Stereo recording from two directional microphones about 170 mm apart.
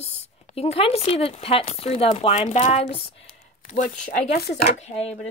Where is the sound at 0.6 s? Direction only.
35° left (ahead or behind).